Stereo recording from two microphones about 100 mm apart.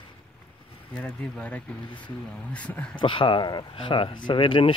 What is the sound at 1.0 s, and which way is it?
Speech, 15° left (ahead or behind).